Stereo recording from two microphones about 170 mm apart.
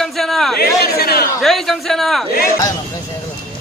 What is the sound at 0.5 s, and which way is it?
Speech, 65° left (ahead or behind).